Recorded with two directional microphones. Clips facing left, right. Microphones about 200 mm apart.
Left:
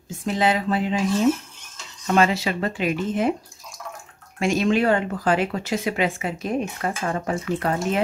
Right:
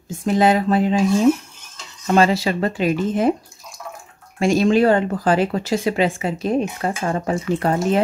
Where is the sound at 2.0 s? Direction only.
35° right (ahead or behind).